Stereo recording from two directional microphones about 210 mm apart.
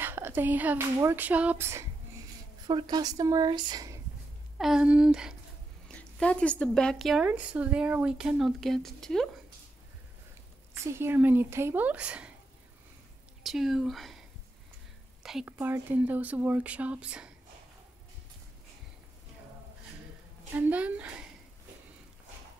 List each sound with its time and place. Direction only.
0.0 s a woman's voice: 10° right (ahead or behind)
4.6 s speech: 5° right (ahead or behind)
10.8 s speech: 10° right (ahead or behind)
13.4 s speech: centre (ahead or behind)
15.2 s speech: 5° right (ahead or behind)
20.5 s speech: 5° right (ahead or behind)